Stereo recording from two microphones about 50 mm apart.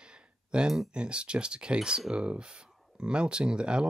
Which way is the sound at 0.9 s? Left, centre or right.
Centre.